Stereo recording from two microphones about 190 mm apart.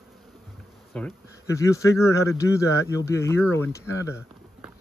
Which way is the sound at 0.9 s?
5° left (ahead or behind).